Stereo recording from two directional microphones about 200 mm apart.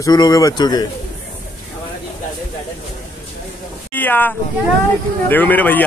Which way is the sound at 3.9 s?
10° left (ahead or behind).